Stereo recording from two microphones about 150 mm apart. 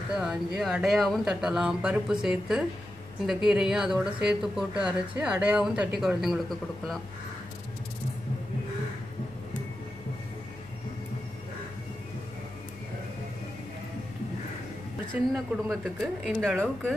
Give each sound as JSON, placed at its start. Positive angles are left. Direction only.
{"t": 0.1, "sound": "a woman's voice", "side_deg": -5}
{"t": 15.3, "sound": "speech", "side_deg": 0}